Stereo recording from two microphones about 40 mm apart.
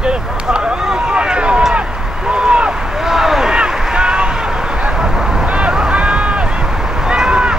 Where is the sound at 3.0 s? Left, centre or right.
Centre.